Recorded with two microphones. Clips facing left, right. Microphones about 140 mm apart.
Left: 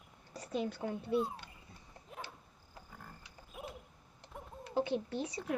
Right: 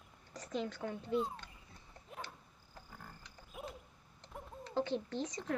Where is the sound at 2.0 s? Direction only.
5° left (ahead or behind).